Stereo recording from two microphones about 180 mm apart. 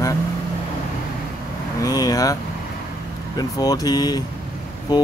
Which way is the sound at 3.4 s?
20° left (ahead or behind).